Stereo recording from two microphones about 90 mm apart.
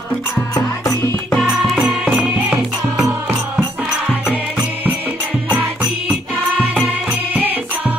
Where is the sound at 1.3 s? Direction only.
Centre (ahead or behind).